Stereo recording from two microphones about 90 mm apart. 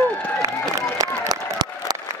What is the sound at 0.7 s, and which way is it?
Run, 45° right (ahead or behind).